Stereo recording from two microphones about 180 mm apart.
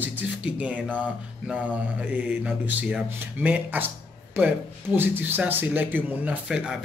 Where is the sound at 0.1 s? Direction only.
10° right (ahead or behind).